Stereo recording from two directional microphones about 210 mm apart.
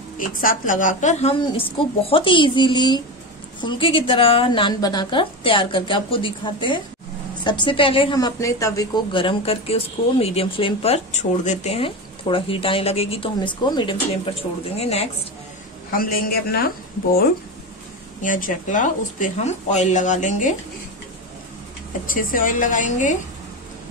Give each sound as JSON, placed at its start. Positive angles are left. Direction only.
{"t": 0.2, "sound": "a woman's voice", "side_deg": 40}
{"t": 16.0, "sound": "a man's voice", "side_deg": 45}
{"t": 18.2, "sound": "speech", "side_deg": 40}
{"t": 22.0, "sound": "speech", "side_deg": 40}